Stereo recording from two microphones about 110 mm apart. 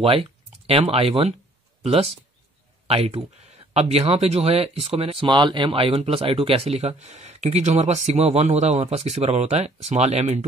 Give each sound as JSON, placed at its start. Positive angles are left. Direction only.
{"t": 0.0, "sound": "speech", "side_deg": -60}